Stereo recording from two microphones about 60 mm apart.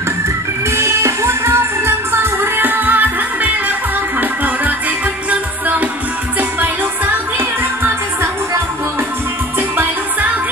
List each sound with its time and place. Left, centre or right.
0.7 s music: right
5.3 s music: right
7.3 s music: right